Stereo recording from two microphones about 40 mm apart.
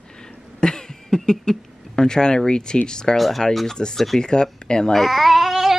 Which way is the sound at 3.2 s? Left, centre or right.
Centre.